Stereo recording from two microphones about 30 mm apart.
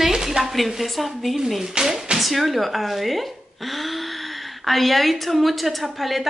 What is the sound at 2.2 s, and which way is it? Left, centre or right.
Speech, centre.